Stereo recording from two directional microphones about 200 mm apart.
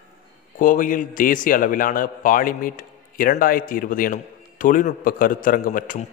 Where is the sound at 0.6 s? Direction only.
40° left (ahead or behind).